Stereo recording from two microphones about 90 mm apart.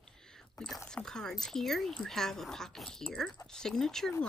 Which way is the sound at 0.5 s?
5° left (ahead or behind).